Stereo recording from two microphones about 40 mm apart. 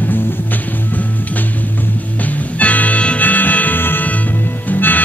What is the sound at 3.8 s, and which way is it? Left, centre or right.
Music, left.